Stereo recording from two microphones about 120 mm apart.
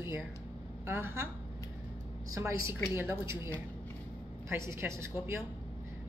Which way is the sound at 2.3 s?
25° right (ahead or behind).